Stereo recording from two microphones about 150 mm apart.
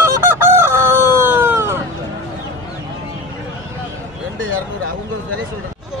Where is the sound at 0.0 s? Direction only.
15° right (ahead or behind).